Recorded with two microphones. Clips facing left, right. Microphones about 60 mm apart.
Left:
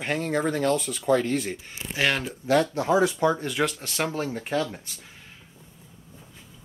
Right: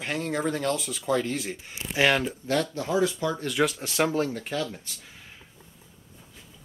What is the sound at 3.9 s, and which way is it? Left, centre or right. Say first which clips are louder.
Speech: right 3 dB; centre.